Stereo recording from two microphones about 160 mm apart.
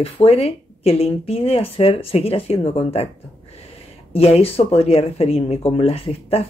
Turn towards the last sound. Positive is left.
turn(degrees=40)  # may be behind; listen again after turning